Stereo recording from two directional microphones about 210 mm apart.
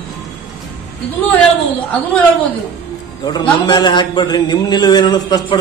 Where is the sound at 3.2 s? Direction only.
20° left (ahead or behind).